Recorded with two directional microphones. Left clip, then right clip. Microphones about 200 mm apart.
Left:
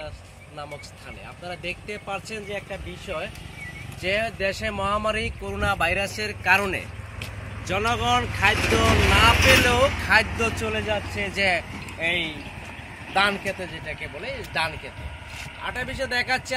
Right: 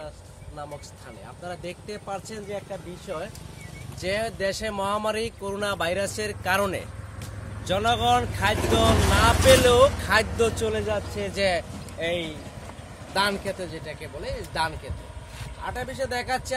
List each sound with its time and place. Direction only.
1.6 s speech: 10° right (ahead or behind); by 11.6 s 40° right (ahead or behind)
11.7 s speech: 50° right (ahead or behind)
13.1 s speech: 35° right (ahead or behind)